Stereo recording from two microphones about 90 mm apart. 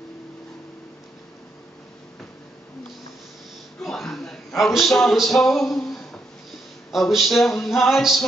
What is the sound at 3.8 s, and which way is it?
A man's voice, centre (ahead or behind).